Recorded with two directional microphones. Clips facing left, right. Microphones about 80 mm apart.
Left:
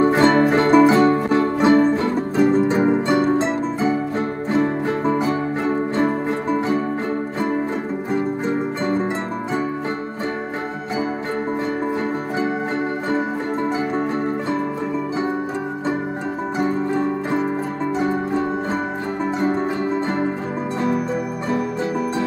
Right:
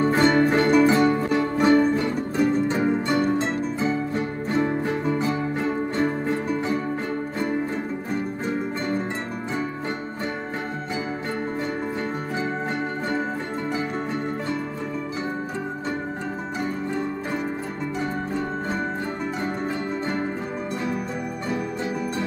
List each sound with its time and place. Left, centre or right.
0.0 s music: left
8.1 s music: left
16.5 s music: left